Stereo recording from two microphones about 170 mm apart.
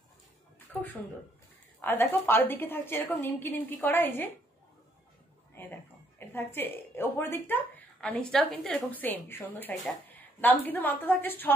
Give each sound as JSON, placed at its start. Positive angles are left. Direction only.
{"t": 0.7, "sound": "a woman's voice", "side_deg": 10}
{"t": 5.6, "sound": "a woman's voice", "side_deg": 10}